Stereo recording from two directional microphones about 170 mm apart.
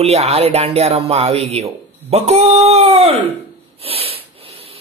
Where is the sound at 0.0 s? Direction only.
35° right (ahead or behind).